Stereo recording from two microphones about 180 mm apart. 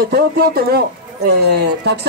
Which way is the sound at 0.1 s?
60° right (ahead or behind).